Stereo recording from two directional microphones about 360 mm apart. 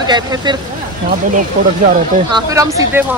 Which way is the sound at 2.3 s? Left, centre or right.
Centre.